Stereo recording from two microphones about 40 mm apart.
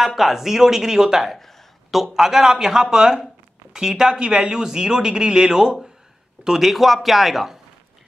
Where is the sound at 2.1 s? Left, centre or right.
Centre.